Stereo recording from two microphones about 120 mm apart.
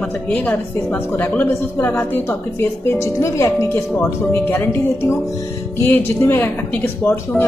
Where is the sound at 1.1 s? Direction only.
15° left (ahead or behind).